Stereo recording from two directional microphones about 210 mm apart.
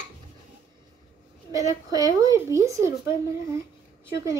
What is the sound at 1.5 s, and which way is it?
Speech, 15° right (ahead or behind).